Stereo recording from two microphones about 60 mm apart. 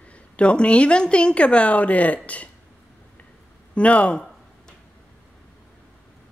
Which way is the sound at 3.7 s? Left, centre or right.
Left.